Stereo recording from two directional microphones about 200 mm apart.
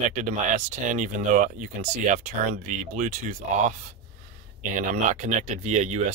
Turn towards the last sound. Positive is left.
turn(degrees=-35)  # may be behind; listen again after turning